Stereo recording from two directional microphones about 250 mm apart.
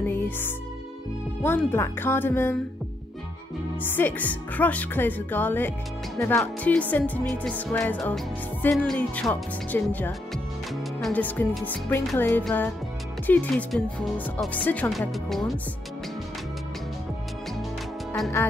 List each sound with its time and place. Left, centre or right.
0.0 s music: centre
1.4 s speech: centre
3.9 s speech: centre
18.1 s speech: centre